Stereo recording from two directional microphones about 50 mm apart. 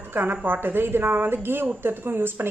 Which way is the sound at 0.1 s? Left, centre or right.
Right.